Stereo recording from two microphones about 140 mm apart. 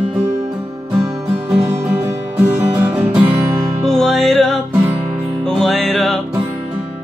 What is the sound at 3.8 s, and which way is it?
Music, 5° left (ahead or behind).